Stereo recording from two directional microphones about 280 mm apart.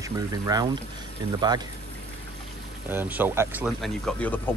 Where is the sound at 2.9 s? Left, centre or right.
Centre.